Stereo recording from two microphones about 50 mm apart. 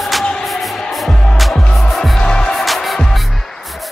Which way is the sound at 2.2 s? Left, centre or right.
Centre.